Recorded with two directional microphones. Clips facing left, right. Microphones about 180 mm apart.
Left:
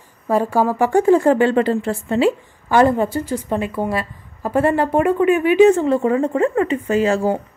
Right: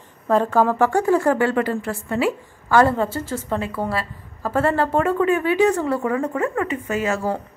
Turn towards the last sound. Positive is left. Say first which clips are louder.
# left 6 dB
turn(degrees=30)  # may be behind; listen again after turning